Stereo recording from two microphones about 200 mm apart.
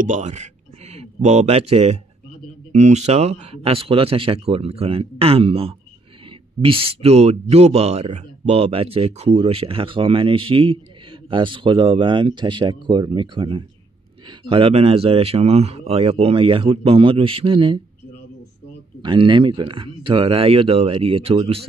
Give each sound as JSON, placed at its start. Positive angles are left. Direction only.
{"t": 0.0, "sound": "speech", "side_deg": -35}
{"t": 18.9, "sound": "speech", "side_deg": -25}